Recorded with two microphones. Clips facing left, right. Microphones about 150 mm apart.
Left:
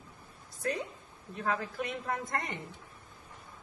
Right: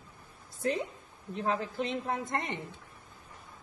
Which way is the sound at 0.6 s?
25° right (ahead or behind).